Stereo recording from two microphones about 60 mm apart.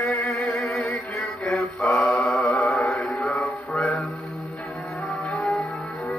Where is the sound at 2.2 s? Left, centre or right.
Centre.